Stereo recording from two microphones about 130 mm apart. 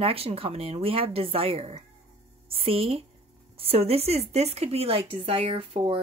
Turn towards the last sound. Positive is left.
turn(degrees=-45)  # may be behind; listen again after turning